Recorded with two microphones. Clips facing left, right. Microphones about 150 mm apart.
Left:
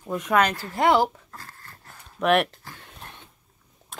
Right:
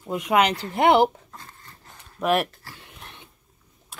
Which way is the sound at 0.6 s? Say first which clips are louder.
Right 3 dB; 25° right (ahead or behind).